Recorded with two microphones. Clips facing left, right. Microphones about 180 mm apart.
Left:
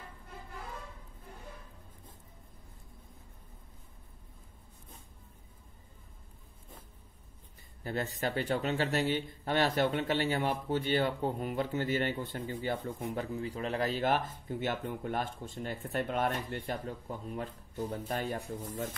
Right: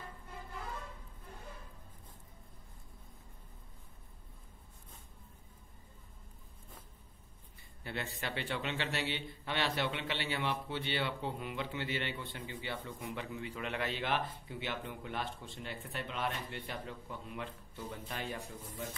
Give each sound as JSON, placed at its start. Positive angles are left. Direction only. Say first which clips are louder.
{"t": 7.8, "sound": "a man's voice", "louder": "left 7 dB", "side_deg": 40}